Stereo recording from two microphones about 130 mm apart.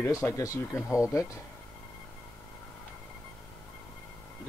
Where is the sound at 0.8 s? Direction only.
10° right (ahead or behind).